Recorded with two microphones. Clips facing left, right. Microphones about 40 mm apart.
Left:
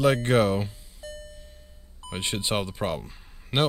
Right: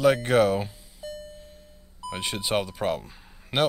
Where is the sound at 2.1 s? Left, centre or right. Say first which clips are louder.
Right 1 dB; centre.